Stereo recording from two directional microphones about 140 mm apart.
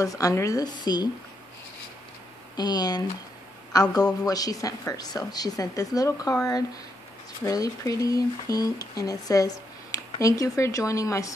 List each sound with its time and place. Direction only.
0.0 s speech: 25° left (ahead or behind)
2.5 s speech: 30° left (ahead or behind)
7.4 s speech: 25° left (ahead or behind)